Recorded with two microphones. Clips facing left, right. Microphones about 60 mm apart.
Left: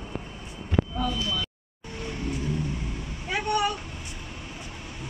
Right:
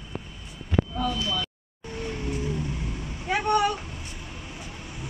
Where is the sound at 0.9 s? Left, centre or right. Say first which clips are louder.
Right 1 dB; centre.